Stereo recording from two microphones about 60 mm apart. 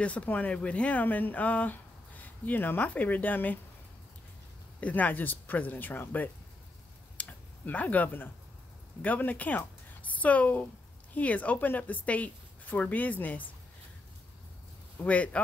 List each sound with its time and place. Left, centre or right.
0.0 s speech: left
4.7 s speech: left
7.2 s a sound: left
9.0 s speech: left
15.0 s speech: left